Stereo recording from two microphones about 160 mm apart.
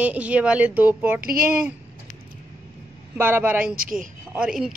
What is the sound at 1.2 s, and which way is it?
Speech, 65° right (ahead or behind).